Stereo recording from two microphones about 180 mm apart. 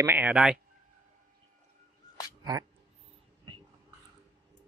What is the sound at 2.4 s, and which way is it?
Speech, 20° right (ahead or behind).